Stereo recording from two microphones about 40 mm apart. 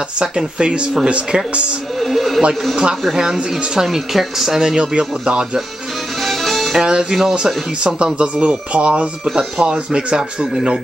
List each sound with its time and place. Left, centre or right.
0.2 s speech: centre
2.0 s speech: centre
2.7 s speech: centre
6.2 s music: centre
6.8 s speech: right
7.1 s speech: centre
7.8 s speech: right
9.2 s speech: centre